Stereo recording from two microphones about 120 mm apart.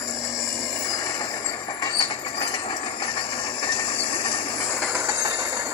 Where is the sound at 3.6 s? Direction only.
35° left (ahead or behind).